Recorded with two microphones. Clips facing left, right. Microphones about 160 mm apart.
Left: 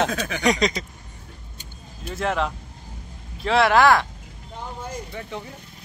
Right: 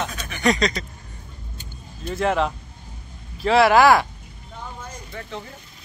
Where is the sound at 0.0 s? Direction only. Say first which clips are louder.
Left 6 dB; 90° left.